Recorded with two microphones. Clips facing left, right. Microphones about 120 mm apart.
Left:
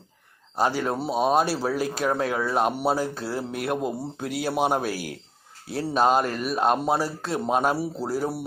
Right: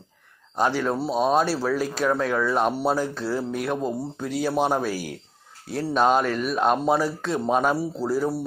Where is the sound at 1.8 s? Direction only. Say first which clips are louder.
Right 1 dB; 45° left (ahead or behind).